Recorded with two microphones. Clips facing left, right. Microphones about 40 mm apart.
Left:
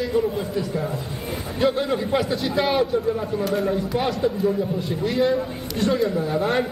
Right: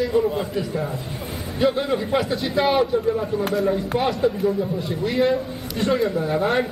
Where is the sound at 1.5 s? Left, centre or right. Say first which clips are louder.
Right 1 dB; centre.